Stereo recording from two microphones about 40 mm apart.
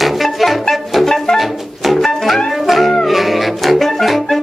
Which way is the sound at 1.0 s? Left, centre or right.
Centre.